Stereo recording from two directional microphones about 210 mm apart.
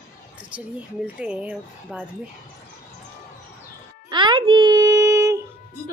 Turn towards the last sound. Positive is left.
turn(degrees=-15)  # may be behind; listen again after turning